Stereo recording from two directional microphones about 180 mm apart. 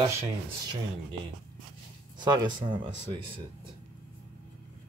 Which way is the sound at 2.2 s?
25° right (ahead or behind).